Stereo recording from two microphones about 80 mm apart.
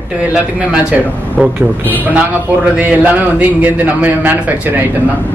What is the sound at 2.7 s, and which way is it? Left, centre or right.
A man's voice, right.